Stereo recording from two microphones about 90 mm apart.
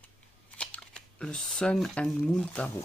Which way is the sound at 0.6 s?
10° left (ahead or behind).